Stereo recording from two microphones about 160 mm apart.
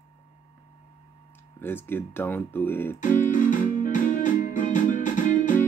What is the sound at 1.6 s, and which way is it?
Speech, 15° left (ahead or behind).